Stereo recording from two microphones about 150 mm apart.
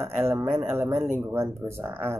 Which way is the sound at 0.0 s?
15° right (ahead or behind).